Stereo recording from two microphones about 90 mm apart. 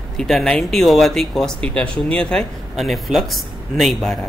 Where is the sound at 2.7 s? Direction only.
Centre (ahead or behind).